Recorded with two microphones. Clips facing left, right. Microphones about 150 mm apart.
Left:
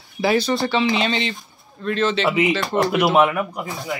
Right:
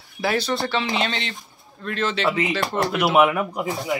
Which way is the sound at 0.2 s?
Centre (ahead or behind).